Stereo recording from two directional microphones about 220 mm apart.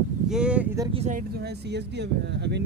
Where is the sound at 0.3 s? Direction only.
5° right (ahead or behind).